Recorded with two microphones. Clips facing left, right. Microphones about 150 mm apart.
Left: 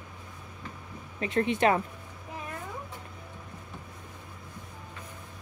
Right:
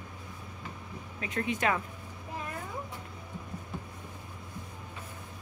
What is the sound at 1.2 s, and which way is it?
Speech, 30° left (ahead or behind).